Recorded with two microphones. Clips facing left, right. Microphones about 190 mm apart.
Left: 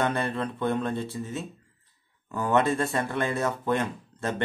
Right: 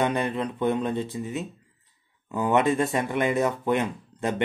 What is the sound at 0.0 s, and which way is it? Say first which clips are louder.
Speech: right 2 dB; 15° right (ahead or behind).